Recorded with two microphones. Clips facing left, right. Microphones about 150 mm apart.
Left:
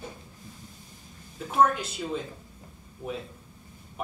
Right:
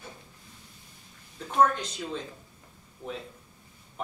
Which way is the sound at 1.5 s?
5° left (ahead or behind).